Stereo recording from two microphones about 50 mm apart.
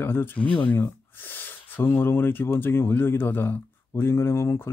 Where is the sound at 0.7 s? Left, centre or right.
Left.